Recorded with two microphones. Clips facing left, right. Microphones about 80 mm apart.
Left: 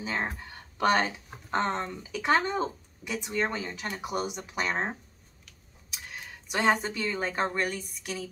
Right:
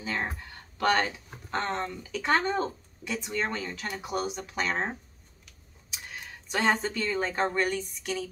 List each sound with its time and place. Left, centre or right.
0.0 s a sound: centre
0.7 s speech: centre
6.4 s speech: centre